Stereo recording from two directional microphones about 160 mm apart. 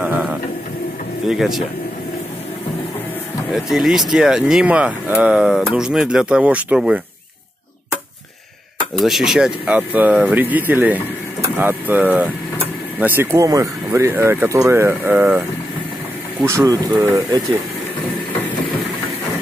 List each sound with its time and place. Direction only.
0.0 s a sound: 10° right (ahead or behind)
1.2 s speech: centre (ahead or behind)
3.5 s speech: centre (ahead or behind)
8.9 s speech: centre (ahead or behind)
16.4 s speech: 20° right (ahead or behind)